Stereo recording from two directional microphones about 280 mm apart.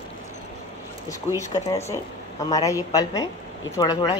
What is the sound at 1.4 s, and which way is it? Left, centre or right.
A woman's voice, centre.